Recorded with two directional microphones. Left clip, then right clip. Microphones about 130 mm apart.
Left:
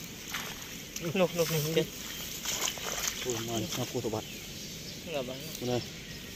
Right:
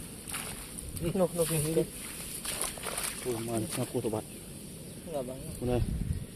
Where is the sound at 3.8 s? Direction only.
15° right (ahead or behind).